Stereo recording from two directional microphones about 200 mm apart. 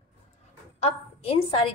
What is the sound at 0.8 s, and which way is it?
Speech, 30° left (ahead or behind).